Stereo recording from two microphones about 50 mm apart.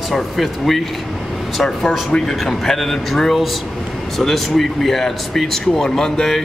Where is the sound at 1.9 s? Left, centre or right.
Left.